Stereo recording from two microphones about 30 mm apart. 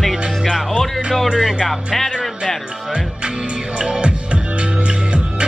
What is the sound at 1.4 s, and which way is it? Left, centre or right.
Speech, centre.